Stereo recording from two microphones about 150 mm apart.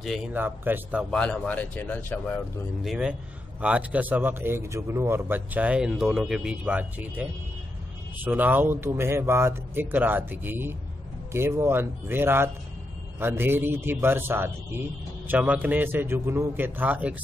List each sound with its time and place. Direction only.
0.3 s speech: 15° right (ahead or behind)
1.1 s speech: 5° left (ahead or behind)
2.8 s speech: 5° right (ahead or behind)